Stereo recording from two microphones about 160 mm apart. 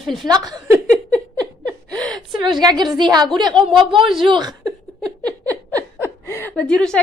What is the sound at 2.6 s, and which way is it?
A woman's voice, 25° right (ahead or behind).